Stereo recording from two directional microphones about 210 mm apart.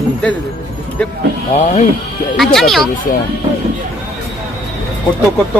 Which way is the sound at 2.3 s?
Centre (ahead or behind).